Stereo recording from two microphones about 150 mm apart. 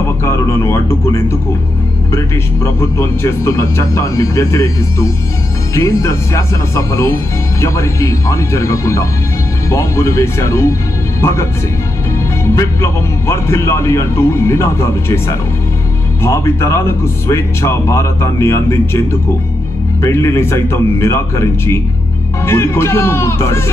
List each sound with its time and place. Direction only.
0.0 s speech: 20° left (ahead or behind)
12.4 s a man's voice: 20° left (ahead or behind)